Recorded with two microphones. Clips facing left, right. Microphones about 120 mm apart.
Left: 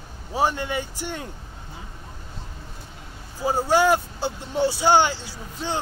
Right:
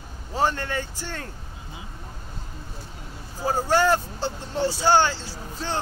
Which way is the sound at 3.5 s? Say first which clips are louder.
Left 2 dB; 15° left (ahead or behind).